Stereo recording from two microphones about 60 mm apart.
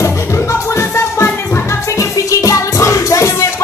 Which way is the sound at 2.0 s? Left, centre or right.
Left.